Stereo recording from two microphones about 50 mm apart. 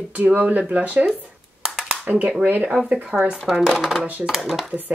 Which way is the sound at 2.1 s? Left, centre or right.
Right.